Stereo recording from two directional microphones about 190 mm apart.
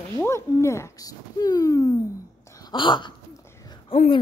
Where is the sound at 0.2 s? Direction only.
15° left (ahead or behind).